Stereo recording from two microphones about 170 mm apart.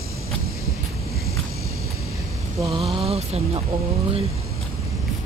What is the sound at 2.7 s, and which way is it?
Speech, 30° right (ahead or behind).